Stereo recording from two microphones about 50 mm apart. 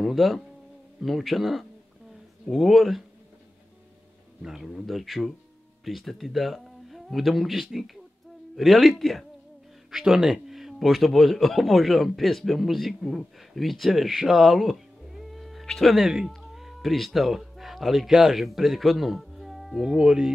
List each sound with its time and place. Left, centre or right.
0.0 s a sound: centre
1.0 s a man's voice: centre
4.4 s a man's voice: centre
9.8 s a man's voice: centre
19.9 s speech: centre